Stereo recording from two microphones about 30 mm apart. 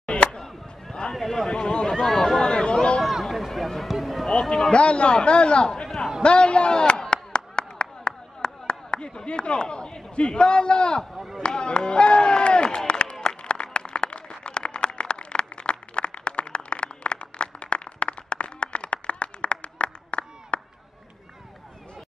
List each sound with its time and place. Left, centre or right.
0.0 s chop: left
0.4 s chop: centre
1.1 s a sound: centre
1.5 s a man's voice: left
2.0 s a sound: centre
2.4 s a sound: left
3.3 s run: centre
4.0 s basketball bounce: centre
4.3 s a man's voice: left
6.2 s chop: left
10.1 s a man's voice: left
11.3 s run: left
14.4 s a sound: left